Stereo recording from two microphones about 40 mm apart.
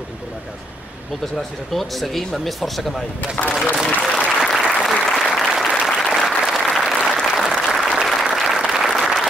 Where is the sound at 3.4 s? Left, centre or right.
Centre.